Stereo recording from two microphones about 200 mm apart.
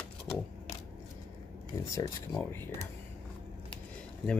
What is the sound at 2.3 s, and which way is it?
Speech, 10° left (ahead or behind).